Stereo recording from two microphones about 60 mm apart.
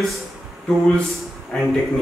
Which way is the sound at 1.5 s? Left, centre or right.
Centre.